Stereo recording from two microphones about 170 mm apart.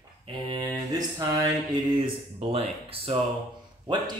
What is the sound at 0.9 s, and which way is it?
Speech, 20° right (ahead or behind).